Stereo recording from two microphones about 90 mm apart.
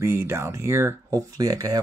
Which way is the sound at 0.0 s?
30° right (ahead or behind).